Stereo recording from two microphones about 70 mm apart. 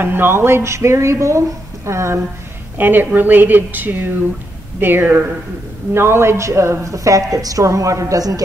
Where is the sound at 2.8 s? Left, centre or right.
Right.